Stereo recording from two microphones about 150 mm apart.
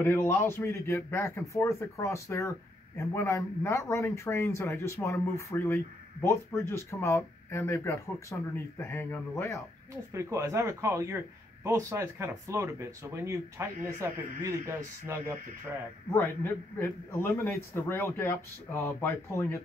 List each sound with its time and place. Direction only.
0.0 s speech: 15° left (ahead or behind)
10.1 s speech: 20° right (ahead or behind)
16.7 s speech: 15° left (ahead or behind)